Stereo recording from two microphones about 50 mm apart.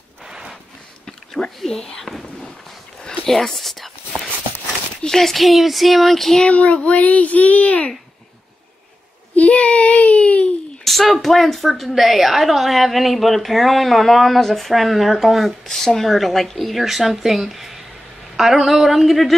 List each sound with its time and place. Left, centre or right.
0.2 s snort: centre
1.0 s a sound: centre
1.6 s speech: centre
5.0 s a woman's voice: centre
6.4 s a child's voice: left
9.3 s a sound: left
10.8 s a woman's voice: centre